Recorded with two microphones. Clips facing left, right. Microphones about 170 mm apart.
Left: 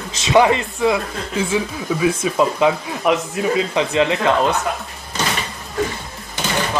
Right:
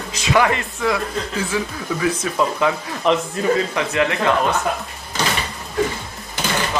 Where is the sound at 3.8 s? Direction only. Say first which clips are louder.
Left 3 dB; 20° left (ahead or behind).